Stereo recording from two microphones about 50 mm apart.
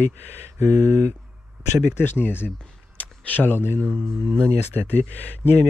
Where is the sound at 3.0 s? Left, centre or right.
Left.